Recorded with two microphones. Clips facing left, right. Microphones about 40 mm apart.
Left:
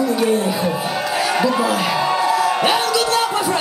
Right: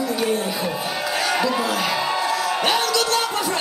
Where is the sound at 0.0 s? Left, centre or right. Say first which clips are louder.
Left 5 dB; centre.